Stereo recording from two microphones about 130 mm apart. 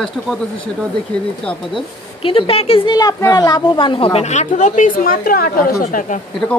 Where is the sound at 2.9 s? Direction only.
30° left (ahead or behind); by 5.3 s 90° left.